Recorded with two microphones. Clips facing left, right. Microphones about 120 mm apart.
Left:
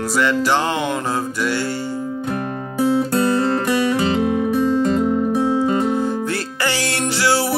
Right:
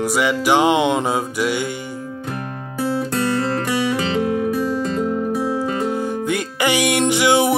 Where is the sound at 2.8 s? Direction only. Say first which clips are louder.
Left 4 dB; 15° left (ahead or behind).